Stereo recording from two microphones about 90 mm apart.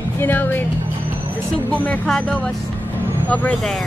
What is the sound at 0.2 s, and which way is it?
Speech, 20° left (ahead or behind).